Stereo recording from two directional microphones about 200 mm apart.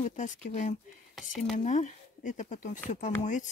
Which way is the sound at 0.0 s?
40° left (ahead or behind).